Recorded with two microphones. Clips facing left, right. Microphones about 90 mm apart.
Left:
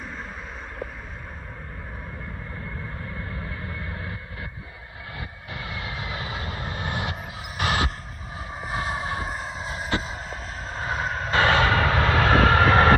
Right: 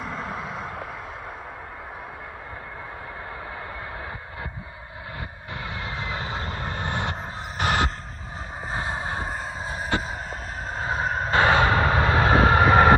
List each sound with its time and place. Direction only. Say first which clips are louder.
5.5 s vehicle: right 1 dB; 30° right (ahead or behind)
9.7 s a sound: right 2 dB; 25° right (ahead or behind)
10.7 s vehicle: right 2 dB; 25° right (ahead or behind)